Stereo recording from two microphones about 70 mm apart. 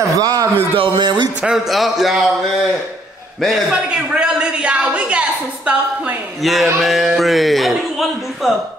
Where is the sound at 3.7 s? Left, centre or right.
Centre.